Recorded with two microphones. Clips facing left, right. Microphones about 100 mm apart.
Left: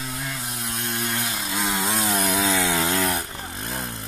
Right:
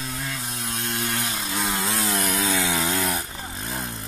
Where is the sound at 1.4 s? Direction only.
15° left (ahead or behind).